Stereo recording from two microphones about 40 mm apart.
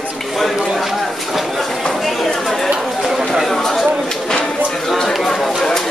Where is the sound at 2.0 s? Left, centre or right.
Centre.